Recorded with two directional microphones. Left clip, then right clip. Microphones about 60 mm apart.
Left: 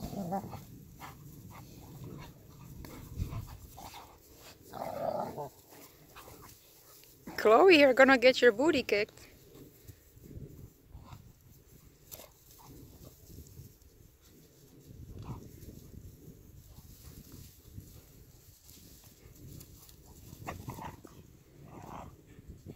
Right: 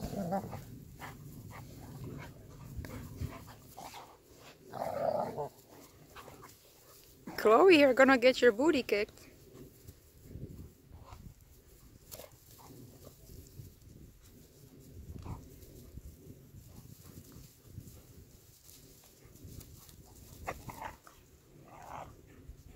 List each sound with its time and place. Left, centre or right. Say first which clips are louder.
0.0 s dog: right 1 dB; centre
7.2 s speech: left 1 dB; centre
20.4 s dog: right 1 dB; centre